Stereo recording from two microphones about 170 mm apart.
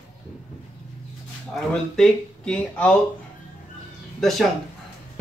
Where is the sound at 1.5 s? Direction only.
5° left (ahead or behind).